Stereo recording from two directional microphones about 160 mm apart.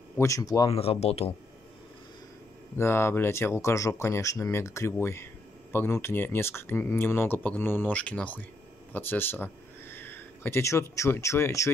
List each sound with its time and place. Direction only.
0.2 s speech: 20° left (ahead or behind)
0.7 s speech: 40° left (ahead or behind)
2.8 s speech: 15° left (ahead or behind)